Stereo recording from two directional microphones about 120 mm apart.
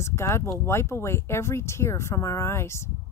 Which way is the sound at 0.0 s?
20° left (ahead or behind).